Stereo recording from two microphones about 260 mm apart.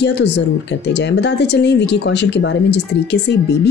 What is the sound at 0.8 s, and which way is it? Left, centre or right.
Speech, left.